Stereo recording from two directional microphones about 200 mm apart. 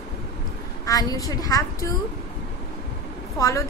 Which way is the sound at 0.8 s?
20° left (ahead or behind).